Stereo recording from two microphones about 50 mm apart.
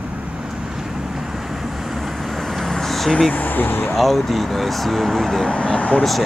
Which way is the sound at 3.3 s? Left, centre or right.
Left.